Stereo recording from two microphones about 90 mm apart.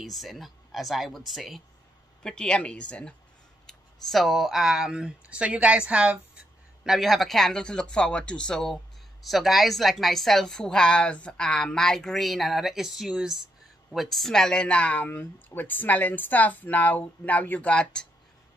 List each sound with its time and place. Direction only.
0.0 s speech: centre (ahead or behind)
2.2 s speech: 10° left (ahead or behind)
3.6 s speech: centre (ahead or behind)